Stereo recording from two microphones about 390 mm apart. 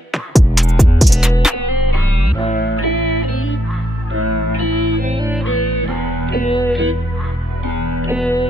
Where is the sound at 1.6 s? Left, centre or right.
Left.